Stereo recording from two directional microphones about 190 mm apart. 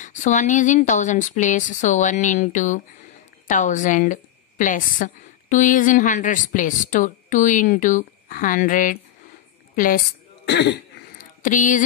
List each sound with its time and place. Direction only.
0.0 s a woman's voice: 40° left (ahead or behind)
10.4 s speech: 65° left (ahead or behind)
11.1 s a sound: 45° left (ahead or behind)